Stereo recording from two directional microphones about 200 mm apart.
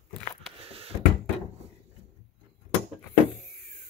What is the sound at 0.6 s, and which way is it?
Cupboard open or close, 30° right (ahead or behind).